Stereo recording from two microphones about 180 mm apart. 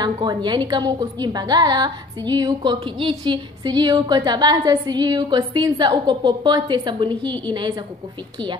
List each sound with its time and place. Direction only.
0.0 s a woman's voice: 25° right (ahead or behind)